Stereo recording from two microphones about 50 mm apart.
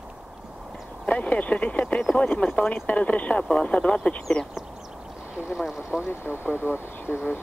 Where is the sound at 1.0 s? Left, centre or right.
Left.